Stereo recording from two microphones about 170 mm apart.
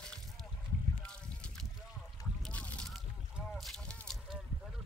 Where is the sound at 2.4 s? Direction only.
5° left (ahead or behind).